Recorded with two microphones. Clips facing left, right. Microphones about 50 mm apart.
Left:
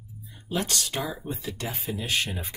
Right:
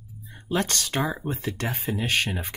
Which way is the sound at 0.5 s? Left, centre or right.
Right.